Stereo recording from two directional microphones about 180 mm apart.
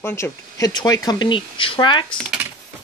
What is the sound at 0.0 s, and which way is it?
Speech, 15° left (ahead or behind).